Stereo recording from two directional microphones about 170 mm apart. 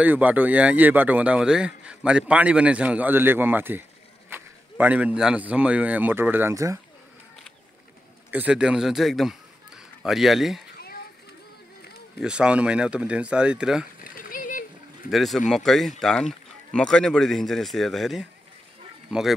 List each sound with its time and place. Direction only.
0.0 s a man's voice: 10° right (ahead or behind)
8.3 s a man's voice: 10° right (ahead or behind)
12.2 s a man's voice: 5° right (ahead or behind)
14.1 s a sound: 55° left (ahead or behind)
15.0 s speech: centre (ahead or behind)